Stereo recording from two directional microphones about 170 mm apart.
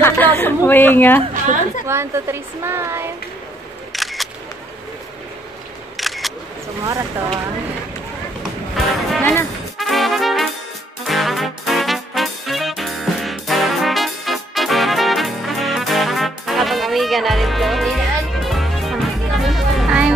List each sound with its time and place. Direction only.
0.0 s a sound: 15° left (ahead or behind)
0.7 s a woman's voice: 10° left (ahead or behind)
1.9 s speech: 15° right (ahead or behind)
3.9 s single-lens reflex camera: centre (ahead or behind)
5.9 s single-lens reflex camera: centre (ahead or behind)
8.7 s music: centre (ahead or behind)
9.2 s speech: 15° left (ahead or behind)
9.8 s music: centre (ahead or behind)